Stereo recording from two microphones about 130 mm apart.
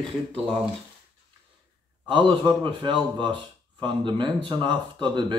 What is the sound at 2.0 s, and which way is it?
Speech, 40° right (ahead or behind).